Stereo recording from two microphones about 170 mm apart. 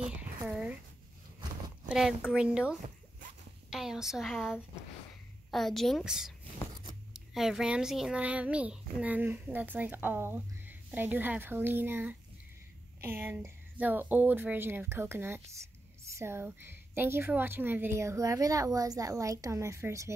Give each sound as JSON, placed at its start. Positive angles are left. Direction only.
{"t": 0.5, "sound": "a child's voice", "side_deg": -5}
{"t": 1.9, "sound": "a woman's voice", "side_deg": -5}
{"t": 3.7, "sound": "a woman's voice", "side_deg": -5}
{"t": 5.5, "sound": "a woman's voice", "side_deg": 0}